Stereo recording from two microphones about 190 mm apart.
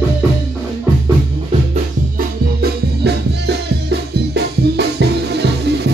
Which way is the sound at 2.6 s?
60° right (ahead or behind).